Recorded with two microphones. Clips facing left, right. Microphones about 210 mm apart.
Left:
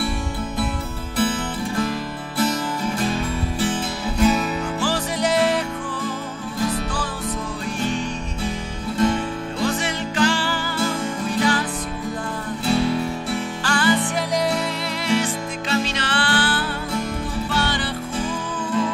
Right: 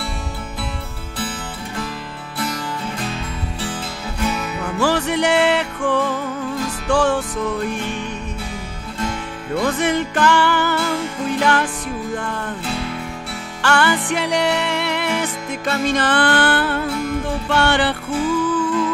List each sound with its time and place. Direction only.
4.7 s music: 65° right (ahead or behind)
9.6 s music: 55° right (ahead or behind)
13.6 s music: 70° right (ahead or behind)